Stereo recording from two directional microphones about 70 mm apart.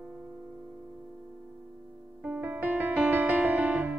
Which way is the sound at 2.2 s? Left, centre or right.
Right.